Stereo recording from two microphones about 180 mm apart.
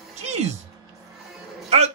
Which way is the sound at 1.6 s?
40° right (ahead or behind).